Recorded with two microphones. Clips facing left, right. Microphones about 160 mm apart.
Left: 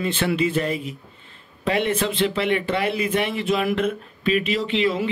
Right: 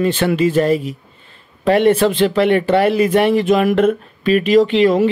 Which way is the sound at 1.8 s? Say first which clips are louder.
Right 9 dB; 60° right (ahead or behind).